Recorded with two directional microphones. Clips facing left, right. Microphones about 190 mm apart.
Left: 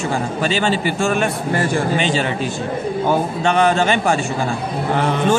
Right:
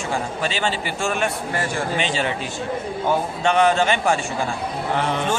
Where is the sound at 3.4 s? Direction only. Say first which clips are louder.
Left 1 dB; 40° left (ahead or behind).